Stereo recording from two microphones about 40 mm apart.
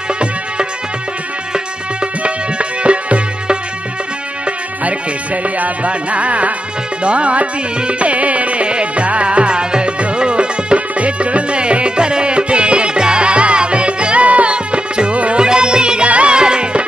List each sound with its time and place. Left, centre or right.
2.8 s music: right